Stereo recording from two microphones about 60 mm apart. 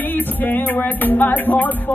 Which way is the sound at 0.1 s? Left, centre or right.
Left.